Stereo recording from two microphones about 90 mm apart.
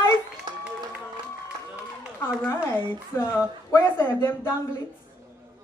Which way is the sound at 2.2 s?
25° left (ahead or behind).